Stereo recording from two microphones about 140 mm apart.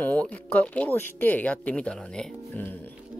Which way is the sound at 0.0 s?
10° left (ahead or behind).